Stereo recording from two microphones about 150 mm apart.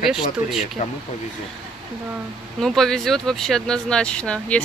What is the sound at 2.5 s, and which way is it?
Speech, centre (ahead or behind).